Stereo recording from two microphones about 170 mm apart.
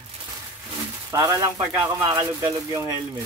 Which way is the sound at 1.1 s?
20° right (ahead or behind).